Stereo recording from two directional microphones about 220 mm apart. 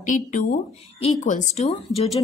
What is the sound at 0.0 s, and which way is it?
A woman's voice, 35° left (ahead or behind).